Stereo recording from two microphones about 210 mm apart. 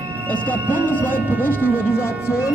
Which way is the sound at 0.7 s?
10° left (ahead or behind).